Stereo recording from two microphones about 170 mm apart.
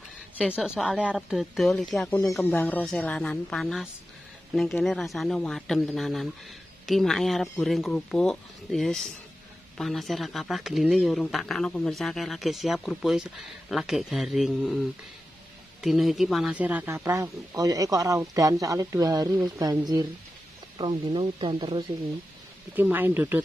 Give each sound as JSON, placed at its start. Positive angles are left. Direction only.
{"t": 0.6, "sound": "speech", "side_deg": 0}
{"t": 15.8, "sound": "speech", "side_deg": 0}
{"t": 22.8, "sound": "speech", "side_deg": -10}